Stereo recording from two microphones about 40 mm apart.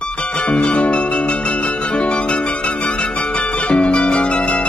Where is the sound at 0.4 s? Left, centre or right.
Left.